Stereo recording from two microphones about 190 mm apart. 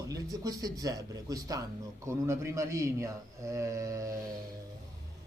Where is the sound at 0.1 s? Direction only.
20° right (ahead or behind).